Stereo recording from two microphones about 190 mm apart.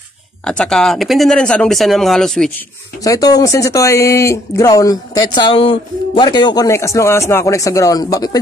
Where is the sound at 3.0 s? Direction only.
20° left (ahead or behind).